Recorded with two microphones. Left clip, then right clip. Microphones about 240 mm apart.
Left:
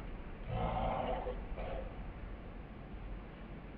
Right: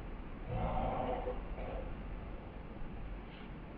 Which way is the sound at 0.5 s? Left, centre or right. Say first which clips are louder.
Left 1 dB; left.